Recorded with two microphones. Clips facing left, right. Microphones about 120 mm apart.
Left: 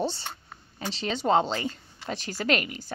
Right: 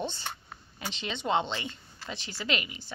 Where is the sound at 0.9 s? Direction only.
35° left (ahead or behind).